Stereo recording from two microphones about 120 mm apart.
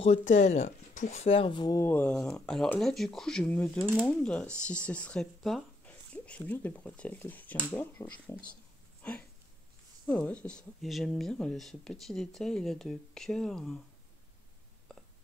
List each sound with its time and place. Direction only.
0.0 s speech: 80° left; by 1.8 s 40° left (ahead or behind)
1.8 s speech: 15° left (ahead or behind)
10.0 s speech: 10° left (ahead or behind)
14.9 s a sound: 5° left (ahead or behind)